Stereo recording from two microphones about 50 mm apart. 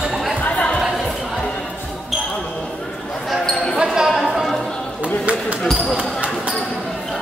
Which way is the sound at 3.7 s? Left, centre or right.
Centre.